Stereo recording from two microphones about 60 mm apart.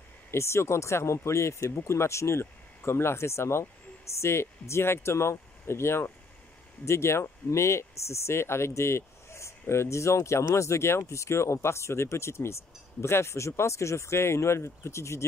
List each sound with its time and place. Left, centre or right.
0.3 s speech: left